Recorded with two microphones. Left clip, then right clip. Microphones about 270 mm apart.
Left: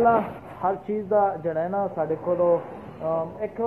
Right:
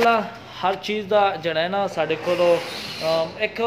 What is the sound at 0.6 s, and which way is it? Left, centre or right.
Speech, centre.